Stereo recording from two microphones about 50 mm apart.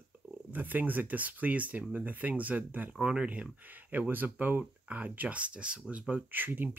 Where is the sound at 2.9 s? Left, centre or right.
Right.